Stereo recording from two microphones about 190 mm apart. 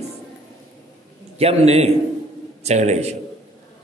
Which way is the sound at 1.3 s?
35° right (ahead or behind).